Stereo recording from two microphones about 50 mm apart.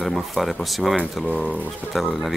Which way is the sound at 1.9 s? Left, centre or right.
Centre.